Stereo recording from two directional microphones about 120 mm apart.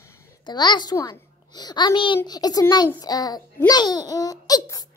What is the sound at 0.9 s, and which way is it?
A woman's voice, 35° left (ahead or behind).